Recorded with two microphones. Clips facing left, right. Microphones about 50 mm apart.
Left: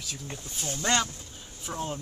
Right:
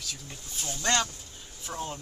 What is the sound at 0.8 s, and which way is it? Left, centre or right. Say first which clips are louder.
Speech: even; centre.